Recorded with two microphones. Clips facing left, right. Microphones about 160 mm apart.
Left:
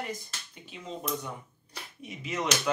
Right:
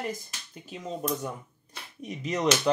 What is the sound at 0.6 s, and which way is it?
Speech, 40° right (ahead or behind).